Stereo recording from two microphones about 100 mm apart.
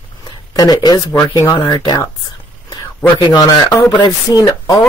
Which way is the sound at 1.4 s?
35° left (ahead or behind).